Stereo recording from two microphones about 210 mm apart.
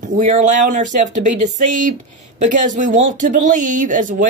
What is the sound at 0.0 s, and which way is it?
Speech, 35° right (ahead or behind).